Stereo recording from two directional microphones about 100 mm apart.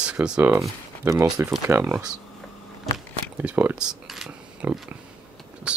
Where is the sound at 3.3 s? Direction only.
20° right (ahead or behind).